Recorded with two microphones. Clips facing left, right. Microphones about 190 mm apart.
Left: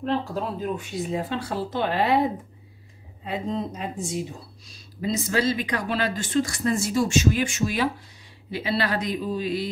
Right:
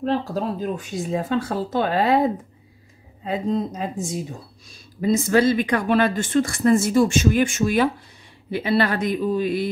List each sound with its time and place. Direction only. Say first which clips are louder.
0.0 s speech: right 3 dB; 40° right (ahead or behind)
3.3 s speech: right 5 dB; 40° right (ahead or behind)